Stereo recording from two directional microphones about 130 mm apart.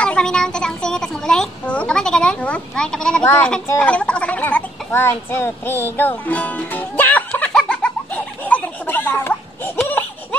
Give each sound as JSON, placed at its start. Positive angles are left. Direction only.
{"t": 0.0, "sound": "a child's voice", "side_deg": 5}
{"t": 3.3, "sound": "speech", "side_deg": 15}
{"t": 3.8, "sound": "gargling", "side_deg": 10}
{"t": 8.5, "sound": "a sound", "side_deg": 15}